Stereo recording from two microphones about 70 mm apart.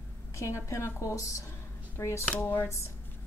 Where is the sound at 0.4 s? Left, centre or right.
Left.